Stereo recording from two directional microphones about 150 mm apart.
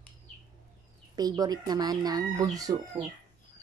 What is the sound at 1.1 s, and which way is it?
Speech, 25° right (ahead or behind).